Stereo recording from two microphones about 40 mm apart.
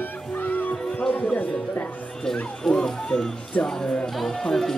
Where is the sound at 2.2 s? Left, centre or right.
Centre.